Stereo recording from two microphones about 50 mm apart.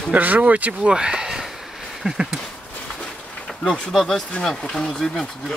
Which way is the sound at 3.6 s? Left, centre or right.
Centre.